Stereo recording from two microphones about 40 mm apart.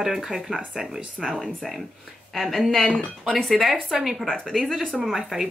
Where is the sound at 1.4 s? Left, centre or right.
Centre.